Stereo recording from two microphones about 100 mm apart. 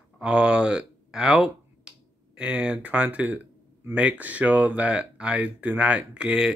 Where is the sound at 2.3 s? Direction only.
10° right (ahead or behind).